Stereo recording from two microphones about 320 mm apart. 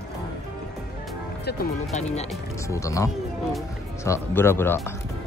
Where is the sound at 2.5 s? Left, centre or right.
Centre.